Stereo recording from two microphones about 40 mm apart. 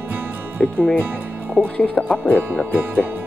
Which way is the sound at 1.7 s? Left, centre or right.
Left.